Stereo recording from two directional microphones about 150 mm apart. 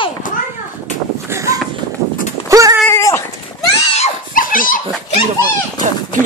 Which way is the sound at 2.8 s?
15° left (ahead or behind).